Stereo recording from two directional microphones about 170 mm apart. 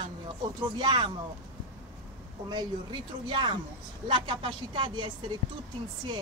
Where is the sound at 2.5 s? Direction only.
25° right (ahead or behind).